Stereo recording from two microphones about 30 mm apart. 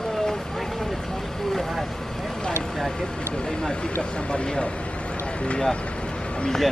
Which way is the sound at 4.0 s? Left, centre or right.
Left.